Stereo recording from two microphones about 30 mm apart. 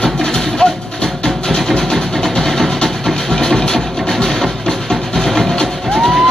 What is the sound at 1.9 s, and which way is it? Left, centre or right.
Music, centre.